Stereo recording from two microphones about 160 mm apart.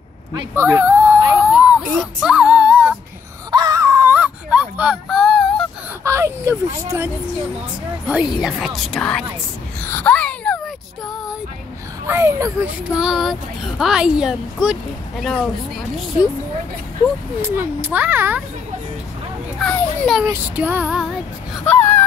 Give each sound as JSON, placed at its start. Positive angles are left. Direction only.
{"t": 0.6, "sound": "whimper", "side_deg": -15}
{"t": 3.5, "sound": "whimper", "side_deg": -25}
{"t": 6.0, "sound": "speech", "side_deg": -20}
{"t": 8.1, "sound": "speech", "side_deg": -5}
{"t": 9.8, "sound": "a sound", "side_deg": 10}
{"t": 12.1, "sound": "speech", "side_deg": -15}
{"t": 17.4, "sound": "music", "side_deg": -15}
{"t": 19.6, "sound": "children playing", "side_deg": 5}
{"t": 20.2, "sound": "music", "side_deg": -15}
{"t": 21.6, "sound": "a sound", "side_deg": 15}